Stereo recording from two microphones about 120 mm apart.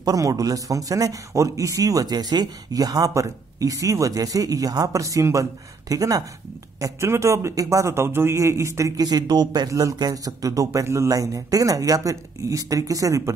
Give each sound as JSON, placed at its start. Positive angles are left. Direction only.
{"t": 0.0, "sound": "a man's voice", "side_deg": -30}